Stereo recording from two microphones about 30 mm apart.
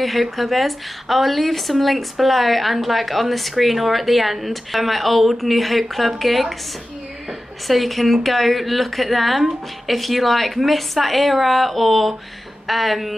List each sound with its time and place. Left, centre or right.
0.0 s a woman's voice: centre
7.6 s a woman's voice: centre